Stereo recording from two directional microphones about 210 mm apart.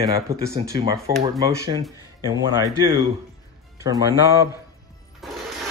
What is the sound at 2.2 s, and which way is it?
Speech, 15° right (ahead or behind).